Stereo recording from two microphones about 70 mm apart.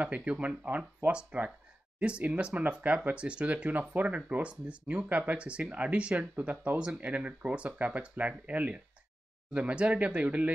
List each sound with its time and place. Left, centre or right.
0.0 s speech: centre